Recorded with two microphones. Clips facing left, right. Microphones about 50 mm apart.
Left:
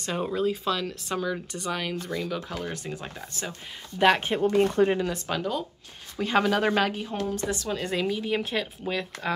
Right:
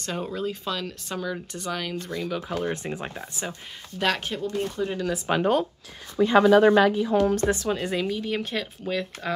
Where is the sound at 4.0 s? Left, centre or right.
Left.